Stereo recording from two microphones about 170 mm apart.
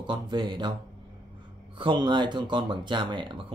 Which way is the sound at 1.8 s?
30° right (ahead or behind).